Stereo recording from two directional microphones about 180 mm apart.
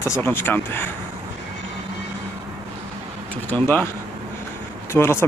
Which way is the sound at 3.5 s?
10° left (ahead or behind).